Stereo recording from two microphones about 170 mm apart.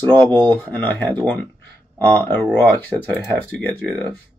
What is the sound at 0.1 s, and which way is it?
Speech, 10° left (ahead or behind).